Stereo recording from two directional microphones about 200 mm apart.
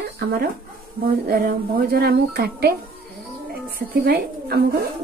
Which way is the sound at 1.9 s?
50° right (ahead or behind).